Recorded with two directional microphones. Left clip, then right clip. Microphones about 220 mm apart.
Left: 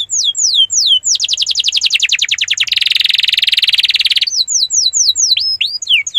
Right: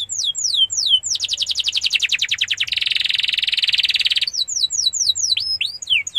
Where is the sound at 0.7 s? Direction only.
30° left (ahead or behind).